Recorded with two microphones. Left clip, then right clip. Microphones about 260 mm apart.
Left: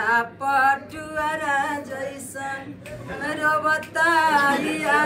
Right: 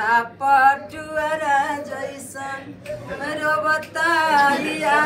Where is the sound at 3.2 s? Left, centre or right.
Centre.